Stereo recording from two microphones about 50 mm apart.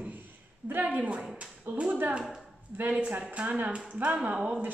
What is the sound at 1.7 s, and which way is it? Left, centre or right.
A woman's voice, right.